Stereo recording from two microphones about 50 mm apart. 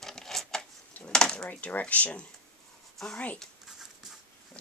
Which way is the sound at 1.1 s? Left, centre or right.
Centre.